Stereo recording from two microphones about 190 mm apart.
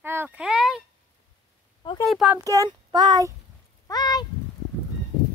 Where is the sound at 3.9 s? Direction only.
20° left (ahead or behind).